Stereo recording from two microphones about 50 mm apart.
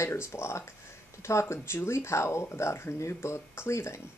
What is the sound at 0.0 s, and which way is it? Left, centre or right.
Speech, left.